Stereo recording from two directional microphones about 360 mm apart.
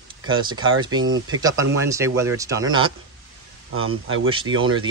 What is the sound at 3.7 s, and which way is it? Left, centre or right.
Speech, right.